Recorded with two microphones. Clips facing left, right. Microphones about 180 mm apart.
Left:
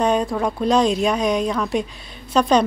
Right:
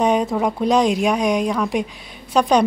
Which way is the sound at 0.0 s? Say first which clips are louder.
Right 1 dB; 20° right (ahead or behind).